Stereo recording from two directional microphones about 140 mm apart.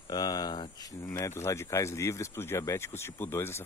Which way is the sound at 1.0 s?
20° left (ahead or behind).